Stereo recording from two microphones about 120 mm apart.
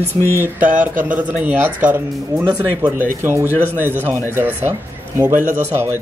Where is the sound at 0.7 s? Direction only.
90° right.